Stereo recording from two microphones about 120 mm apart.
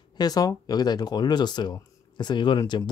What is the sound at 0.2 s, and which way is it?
Speech, 30° left (ahead or behind).